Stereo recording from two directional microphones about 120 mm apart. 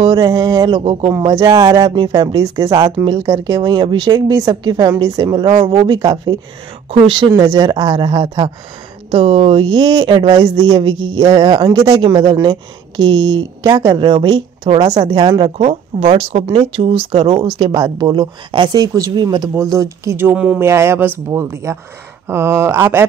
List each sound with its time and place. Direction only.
0.0 s speech: 35° right (ahead or behind)
9.1 s speech: 50° right (ahead or behind)
15.5 s speech: 60° right (ahead or behind)
16.2 s speech: 50° right (ahead or behind)
17.7 s speech: 30° right (ahead or behind)
20.2 s speech: 15° right (ahead or behind)